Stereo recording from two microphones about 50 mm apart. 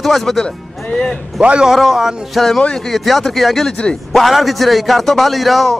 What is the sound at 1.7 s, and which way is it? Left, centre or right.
A man's voice, centre.